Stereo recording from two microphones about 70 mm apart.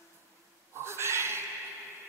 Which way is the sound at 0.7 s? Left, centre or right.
Right.